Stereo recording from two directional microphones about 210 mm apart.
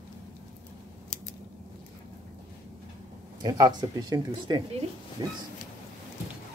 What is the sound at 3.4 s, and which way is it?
Speech, 20° right (ahead or behind).